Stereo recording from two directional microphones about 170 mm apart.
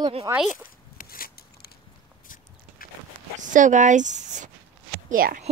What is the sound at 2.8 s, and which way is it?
Walk, 60° left (ahead or behind).